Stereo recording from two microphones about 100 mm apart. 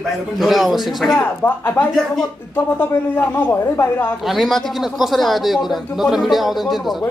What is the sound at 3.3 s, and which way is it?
Speech, 20° left (ahead or behind).